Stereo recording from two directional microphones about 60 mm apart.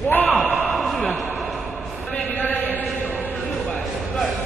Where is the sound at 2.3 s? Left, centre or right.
Left.